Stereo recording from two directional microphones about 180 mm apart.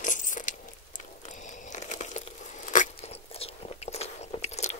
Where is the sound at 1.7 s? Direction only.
40° left (ahead or behind).